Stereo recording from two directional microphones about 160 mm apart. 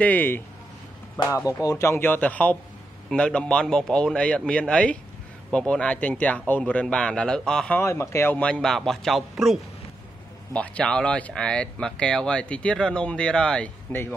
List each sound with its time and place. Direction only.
0.0 s speech: 10° left (ahead or behind)
1.3 s speech: 20° left (ahead or behind); by 7.8 s 5° left (ahead or behind)
7.8 s speech: 20° left (ahead or behind)